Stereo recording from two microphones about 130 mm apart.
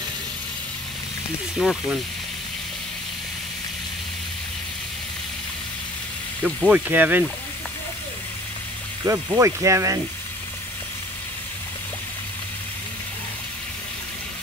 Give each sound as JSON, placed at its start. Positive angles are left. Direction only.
{"t": 1.6, "sound": "speech", "side_deg": -5}
{"t": 6.4, "sound": "speech", "side_deg": -10}
{"t": 9.0, "sound": "speech", "side_deg": -25}